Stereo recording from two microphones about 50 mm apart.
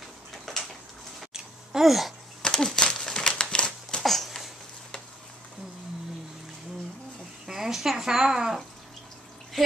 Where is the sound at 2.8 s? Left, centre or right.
Centre.